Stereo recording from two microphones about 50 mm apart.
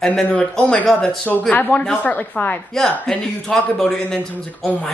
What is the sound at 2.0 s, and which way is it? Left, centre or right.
Speech, left.